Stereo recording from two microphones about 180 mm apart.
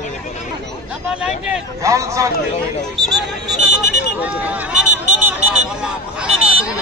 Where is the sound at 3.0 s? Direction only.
Centre (ahead or behind).